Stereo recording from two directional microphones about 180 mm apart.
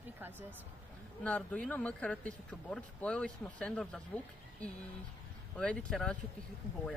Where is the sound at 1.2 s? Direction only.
5° left (ahead or behind).